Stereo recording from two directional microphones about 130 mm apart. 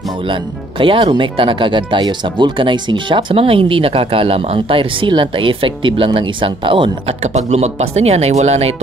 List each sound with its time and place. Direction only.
0.3 s speech: 40° right (ahead or behind)
7.3 s speech: 55° right (ahead or behind)